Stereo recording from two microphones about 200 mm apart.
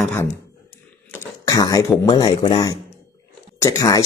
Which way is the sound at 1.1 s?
20° left (ahead or behind).